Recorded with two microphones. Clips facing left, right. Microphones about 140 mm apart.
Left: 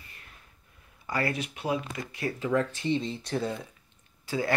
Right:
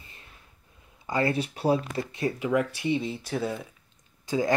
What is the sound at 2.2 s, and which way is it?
Speech, 15° right (ahead or behind).